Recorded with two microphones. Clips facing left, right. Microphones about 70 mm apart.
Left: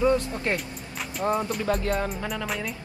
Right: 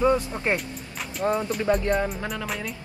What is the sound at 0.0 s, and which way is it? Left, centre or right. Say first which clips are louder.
Speech: right 1 dB; right.